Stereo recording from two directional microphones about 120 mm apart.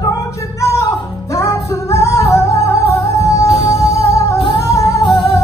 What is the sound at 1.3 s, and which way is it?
Music, 25° left (ahead or behind).